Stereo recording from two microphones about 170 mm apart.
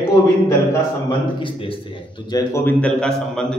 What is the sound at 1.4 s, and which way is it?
Speech, 30° left (ahead or behind).